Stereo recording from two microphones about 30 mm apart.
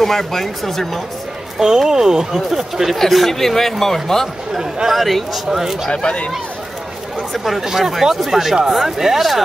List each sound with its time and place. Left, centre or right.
0.0 s speech: centre
1.6 s speech: centre
2.5 s speech: centre
3.1 s speech: centre
4.9 s a man's voice: centre
5.9 s speech: left
7.3 s a man's voice: centre
7.6 s speech: centre